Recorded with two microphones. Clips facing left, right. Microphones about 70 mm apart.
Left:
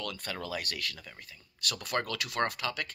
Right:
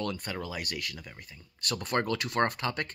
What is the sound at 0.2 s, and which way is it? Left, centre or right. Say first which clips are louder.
Speech: right 1 dB; centre.